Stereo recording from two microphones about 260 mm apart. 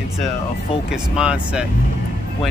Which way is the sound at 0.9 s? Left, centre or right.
Centre.